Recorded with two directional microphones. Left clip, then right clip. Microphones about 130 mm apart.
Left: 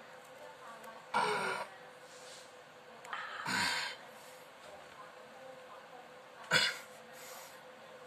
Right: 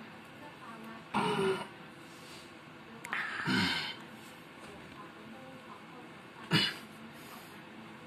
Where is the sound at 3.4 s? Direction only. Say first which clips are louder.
Right 1 dB; 45° left (ahead or behind).